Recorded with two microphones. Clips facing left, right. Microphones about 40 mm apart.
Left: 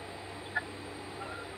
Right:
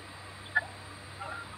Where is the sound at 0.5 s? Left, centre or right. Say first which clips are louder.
Right 5 dB; centre.